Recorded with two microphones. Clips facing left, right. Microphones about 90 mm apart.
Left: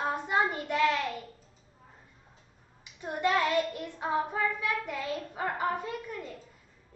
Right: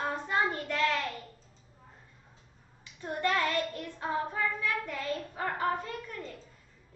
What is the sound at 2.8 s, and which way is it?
Child singing, 15° left (ahead or behind).